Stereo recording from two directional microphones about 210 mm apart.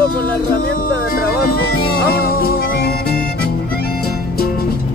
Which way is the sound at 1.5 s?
45° left (ahead or behind).